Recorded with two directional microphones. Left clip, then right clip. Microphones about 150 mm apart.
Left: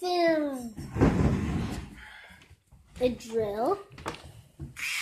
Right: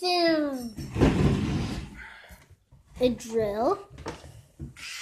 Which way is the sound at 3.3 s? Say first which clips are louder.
Right 2 dB; 10° right (ahead or behind).